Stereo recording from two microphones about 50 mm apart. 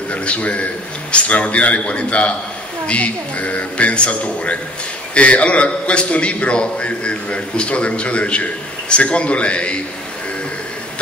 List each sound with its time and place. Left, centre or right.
0.1 s a man's voice: left